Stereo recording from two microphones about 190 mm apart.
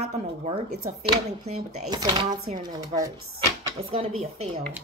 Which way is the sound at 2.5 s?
35° right (ahead or behind).